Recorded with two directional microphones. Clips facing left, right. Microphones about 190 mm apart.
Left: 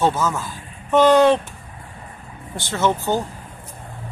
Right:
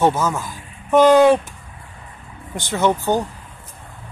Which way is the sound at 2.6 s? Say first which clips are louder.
Right 2 dB; 15° right (ahead or behind).